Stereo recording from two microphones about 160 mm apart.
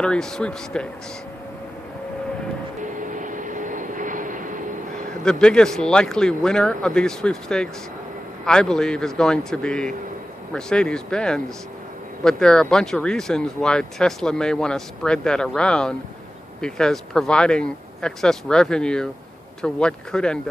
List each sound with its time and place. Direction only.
0.0 s speech: 5° left (ahead or behind)
2.8 s vehicle: 55° right (ahead or behind)
5.2 s speech: 5° left (ahead or behind)